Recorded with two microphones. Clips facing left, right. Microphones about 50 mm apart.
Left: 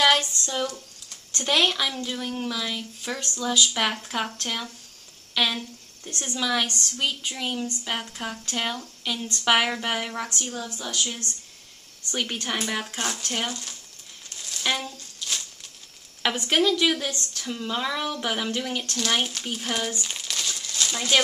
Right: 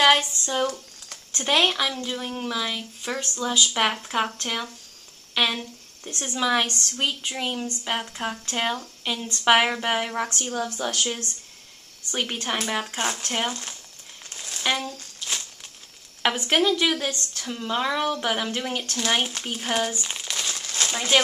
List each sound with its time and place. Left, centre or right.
0.0 s a woman's voice: right
6.7 s a woman's voice: right; by 10.3 s centre
10.5 s speech: right
12.1 s a woman's voice: centre
12.9 s speech: right
14.3 s a sound: right
15.1 s crumpling: right
16.2 s a woman's voice: centre
20.5 s a sound: right
20.9 s speech: right